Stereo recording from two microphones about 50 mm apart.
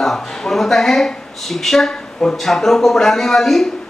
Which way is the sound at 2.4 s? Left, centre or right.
Centre.